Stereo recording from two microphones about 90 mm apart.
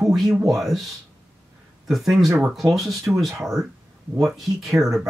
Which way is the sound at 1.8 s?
Centre (ahead or behind).